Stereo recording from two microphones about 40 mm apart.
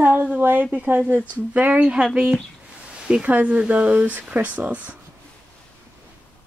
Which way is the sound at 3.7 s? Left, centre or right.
Right.